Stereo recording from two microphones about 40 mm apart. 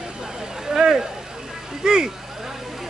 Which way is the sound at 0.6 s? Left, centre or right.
Centre.